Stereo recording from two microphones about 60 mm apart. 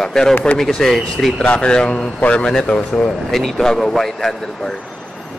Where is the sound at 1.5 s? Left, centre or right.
Centre.